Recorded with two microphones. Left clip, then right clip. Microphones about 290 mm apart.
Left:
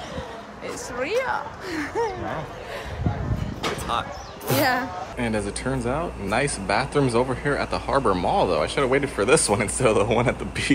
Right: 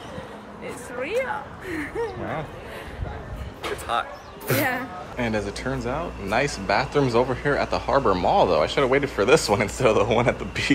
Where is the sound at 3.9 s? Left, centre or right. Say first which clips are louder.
Right 1 dB; centre.